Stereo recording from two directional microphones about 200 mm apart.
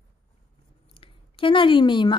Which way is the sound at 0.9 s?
25° left (ahead or behind).